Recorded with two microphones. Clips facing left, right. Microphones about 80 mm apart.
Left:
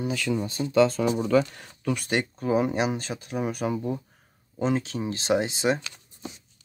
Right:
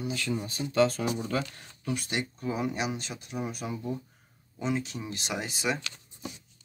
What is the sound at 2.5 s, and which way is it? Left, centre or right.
Speech, left.